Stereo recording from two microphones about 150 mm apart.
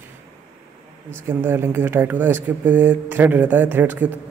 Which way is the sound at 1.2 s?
15° right (ahead or behind).